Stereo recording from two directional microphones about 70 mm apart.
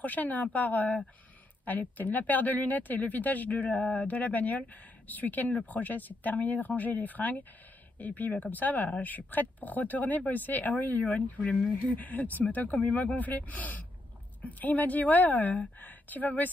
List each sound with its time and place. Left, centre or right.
0.0 s speech: left